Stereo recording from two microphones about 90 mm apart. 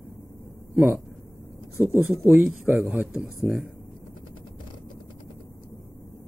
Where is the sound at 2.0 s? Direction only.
10° right (ahead or behind).